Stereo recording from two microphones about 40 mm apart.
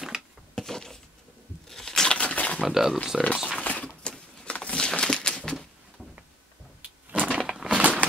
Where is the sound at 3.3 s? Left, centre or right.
Centre.